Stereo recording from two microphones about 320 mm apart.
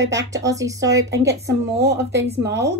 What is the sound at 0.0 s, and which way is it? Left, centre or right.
Speech, right.